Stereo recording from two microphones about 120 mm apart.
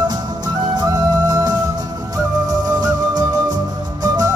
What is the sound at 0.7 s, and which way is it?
Music, 30° right (ahead or behind).